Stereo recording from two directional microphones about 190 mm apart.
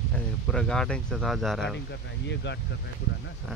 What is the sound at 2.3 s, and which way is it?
Speech, 65° left (ahead or behind).